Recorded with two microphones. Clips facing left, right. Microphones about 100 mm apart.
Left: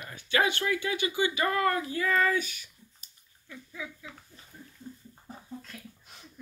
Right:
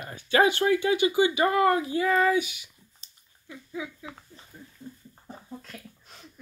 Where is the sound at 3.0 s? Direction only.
20° right (ahead or behind).